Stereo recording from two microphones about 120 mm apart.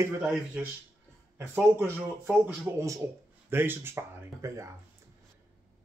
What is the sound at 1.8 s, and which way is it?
Speech, 20° right (ahead or behind).